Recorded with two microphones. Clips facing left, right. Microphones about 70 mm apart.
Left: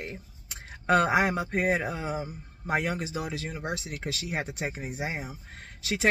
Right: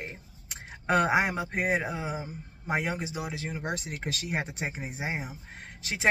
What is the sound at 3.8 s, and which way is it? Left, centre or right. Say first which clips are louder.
Speech: even; right.